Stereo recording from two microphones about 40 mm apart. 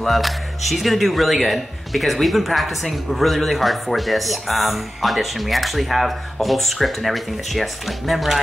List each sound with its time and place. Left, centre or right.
0.0 s speech: centre